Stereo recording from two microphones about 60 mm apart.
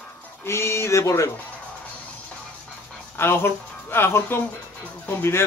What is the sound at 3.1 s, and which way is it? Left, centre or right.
A man's voice, left.